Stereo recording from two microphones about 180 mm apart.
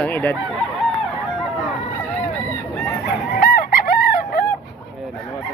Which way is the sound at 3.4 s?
55° left (ahead or behind).